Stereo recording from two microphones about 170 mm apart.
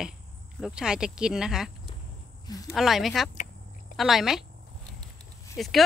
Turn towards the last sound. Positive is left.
turn(degrees=0)  # may be behind; listen again after turning